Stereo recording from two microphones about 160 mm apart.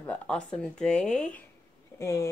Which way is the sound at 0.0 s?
10° left (ahead or behind).